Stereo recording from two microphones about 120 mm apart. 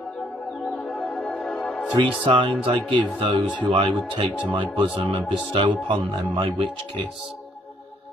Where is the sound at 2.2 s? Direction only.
45° right (ahead or behind).